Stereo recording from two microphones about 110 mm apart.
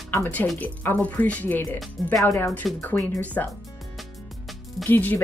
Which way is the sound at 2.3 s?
20° left (ahead or behind).